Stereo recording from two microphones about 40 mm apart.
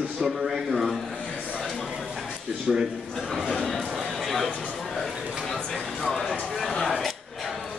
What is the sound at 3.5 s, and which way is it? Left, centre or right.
Speech, centre.